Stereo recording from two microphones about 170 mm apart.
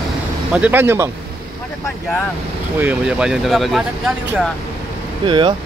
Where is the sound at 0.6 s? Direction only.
10° right (ahead or behind).